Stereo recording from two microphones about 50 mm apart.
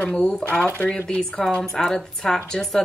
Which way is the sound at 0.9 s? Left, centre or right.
Centre.